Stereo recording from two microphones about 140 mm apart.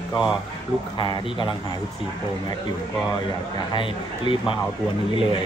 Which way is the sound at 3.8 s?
35° left (ahead or behind).